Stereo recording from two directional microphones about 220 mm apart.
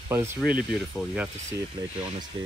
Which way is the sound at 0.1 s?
10° right (ahead or behind).